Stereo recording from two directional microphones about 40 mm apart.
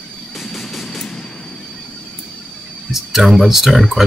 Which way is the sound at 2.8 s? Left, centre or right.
Centre.